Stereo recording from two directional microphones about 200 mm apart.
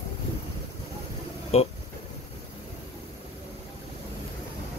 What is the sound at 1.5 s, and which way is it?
Speech, 30° left (ahead or behind).